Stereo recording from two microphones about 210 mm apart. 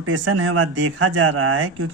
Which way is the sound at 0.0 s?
65° right (ahead or behind).